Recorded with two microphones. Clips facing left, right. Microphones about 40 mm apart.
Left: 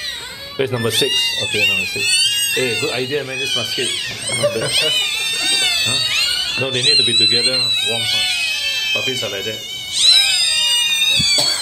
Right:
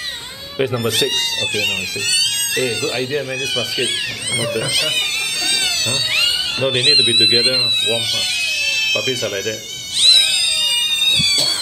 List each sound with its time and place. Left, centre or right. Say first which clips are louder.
0.6 s speech: even; centre
1.5 s speech: left 6 dB; left
2.0 s cat: left 2 dB; centre
2.5 s speech: left 1 dB; centre
4.4 s speech: left 4 dB; centre
5.5 s cat: left 3 dB; centre
6.1 s cat: right 1 dB; centre
6.7 s speech: right 1 dB; centre
8.1 s cat: left 1 dB; centre
10.2 s a sound: left 1 dB; centre